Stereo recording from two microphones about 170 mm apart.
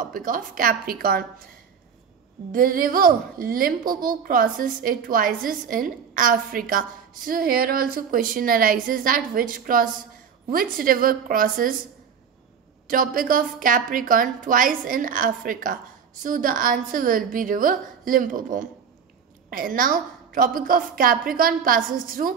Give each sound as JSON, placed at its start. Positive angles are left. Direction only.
{"t": 0.0, "sound": "a woman's voice", "side_deg": -55}
{"t": 2.5, "sound": "a woman's voice", "side_deg": -55}
{"t": 12.8, "sound": "a woman's voice", "side_deg": -55}